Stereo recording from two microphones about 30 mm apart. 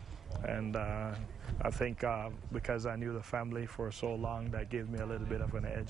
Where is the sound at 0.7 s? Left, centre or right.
Centre.